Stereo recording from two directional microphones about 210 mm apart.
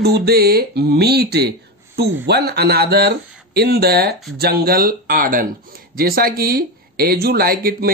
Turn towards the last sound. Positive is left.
turn(degrees=-45)  # may be behind; listen again after turning